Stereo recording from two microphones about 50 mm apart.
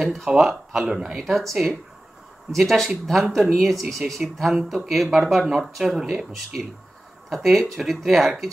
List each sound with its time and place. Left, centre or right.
0.0 s speech: centre
1.1 s speech: centre
3.8 s speech: right
4.6 s speech: centre
7.2 s speech: centre